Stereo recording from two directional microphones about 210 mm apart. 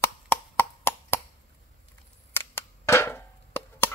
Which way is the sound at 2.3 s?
10° left (ahead or behind).